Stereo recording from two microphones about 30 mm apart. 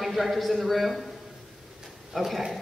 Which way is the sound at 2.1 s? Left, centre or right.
Centre.